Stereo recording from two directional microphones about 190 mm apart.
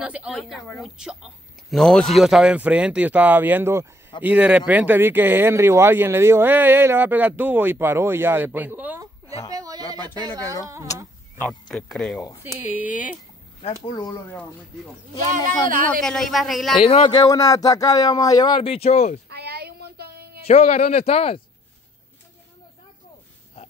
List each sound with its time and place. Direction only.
0.0 s a woman's voice: 5° right (ahead or behind)
9.5 s a sound: 20° right (ahead or behind)
10.5 s speech: 15° right (ahead or behind)
11.7 s speech: 5° left (ahead or behind)
12.4 s speech: 10° right (ahead or behind)
16.0 s speech: centre (ahead or behind)
16.8 s speech: 30° left (ahead or behind)
19.2 s a sound: 60° right (ahead or behind)
20.4 s speech: 35° left (ahead or behind)